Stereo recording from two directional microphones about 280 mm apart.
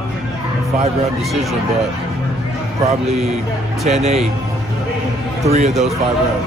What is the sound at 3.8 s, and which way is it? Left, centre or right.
Speech, right.